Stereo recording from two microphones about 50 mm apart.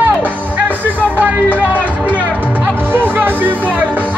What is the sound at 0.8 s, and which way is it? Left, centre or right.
Music, right.